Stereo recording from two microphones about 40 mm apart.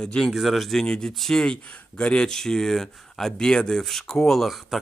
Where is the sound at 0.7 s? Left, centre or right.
Centre.